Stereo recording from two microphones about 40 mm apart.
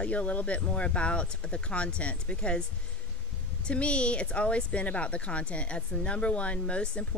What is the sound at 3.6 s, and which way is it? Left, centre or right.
Speech, left.